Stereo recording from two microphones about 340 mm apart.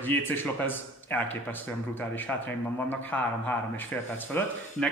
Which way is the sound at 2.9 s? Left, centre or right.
Centre.